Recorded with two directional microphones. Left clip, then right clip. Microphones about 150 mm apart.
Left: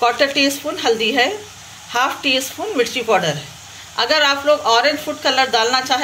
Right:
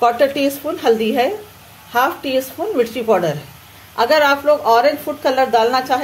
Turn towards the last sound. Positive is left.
turn(degrees=-45)  # may be behind; listen again after turning